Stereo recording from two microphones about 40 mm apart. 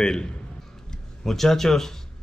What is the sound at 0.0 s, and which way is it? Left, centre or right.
Speech, left.